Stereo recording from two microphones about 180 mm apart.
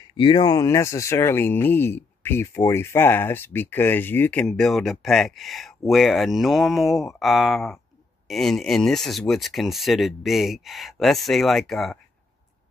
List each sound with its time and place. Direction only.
0.2 s speech: 25° left (ahead or behind); by 12.0 s centre (ahead or behind)